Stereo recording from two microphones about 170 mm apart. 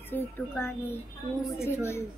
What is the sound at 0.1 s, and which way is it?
Speech, 15° left (ahead or behind).